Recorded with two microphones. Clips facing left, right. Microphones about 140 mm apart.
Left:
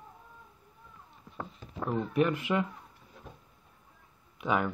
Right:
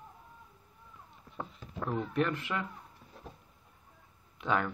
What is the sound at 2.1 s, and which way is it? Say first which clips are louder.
Speech: left 6 dB; 15° left (ahead or behind).